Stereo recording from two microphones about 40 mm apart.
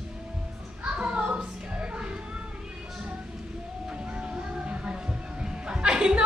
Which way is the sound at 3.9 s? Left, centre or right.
Right.